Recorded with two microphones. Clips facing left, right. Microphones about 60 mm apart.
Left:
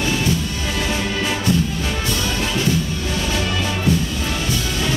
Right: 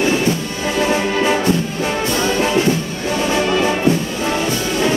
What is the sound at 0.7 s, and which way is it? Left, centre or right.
Music, right.